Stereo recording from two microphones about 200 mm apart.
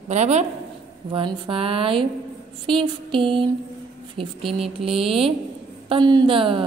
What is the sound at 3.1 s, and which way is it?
Speech, 25° right (ahead or behind).